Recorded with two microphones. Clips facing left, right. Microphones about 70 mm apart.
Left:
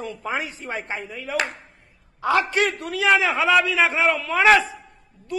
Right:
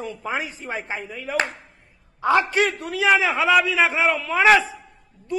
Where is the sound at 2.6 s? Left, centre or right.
Centre.